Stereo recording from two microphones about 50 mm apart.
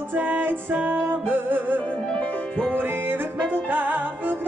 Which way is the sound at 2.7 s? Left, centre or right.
Right.